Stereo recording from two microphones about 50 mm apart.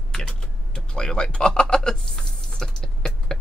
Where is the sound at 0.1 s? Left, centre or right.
Centre.